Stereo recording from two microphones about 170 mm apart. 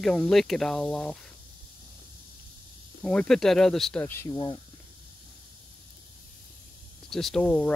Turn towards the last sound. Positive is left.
turn(degrees=5)  # may be behind; listen again after turning